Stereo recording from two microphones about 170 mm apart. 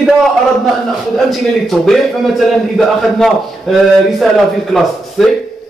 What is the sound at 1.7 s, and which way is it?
Speech, centre (ahead or behind).